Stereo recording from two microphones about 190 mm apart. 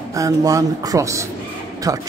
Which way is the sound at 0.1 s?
20° right (ahead or behind).